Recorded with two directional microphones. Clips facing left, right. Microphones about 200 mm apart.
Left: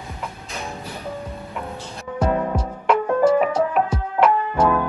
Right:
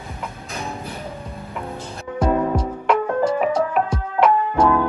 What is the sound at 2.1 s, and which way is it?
Music, 5° left (ahead or behind).